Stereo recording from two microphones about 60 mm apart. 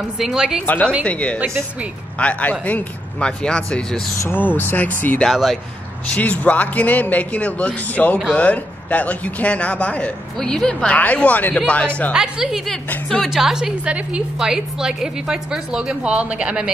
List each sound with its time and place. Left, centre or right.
0.2 s a woman's voice: centre
1.0 s speech: left
4.6 s speech: left
5.3 s speech: centre
6.0 s speech: left
11.1 s speech: left
12.1 s a woman's voice: centre
13.8 s a woman's voice: centre